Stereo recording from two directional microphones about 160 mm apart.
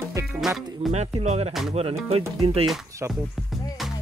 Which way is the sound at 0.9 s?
40° right (ahead or behind).